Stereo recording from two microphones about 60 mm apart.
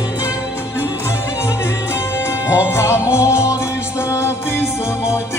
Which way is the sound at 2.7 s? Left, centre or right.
Left.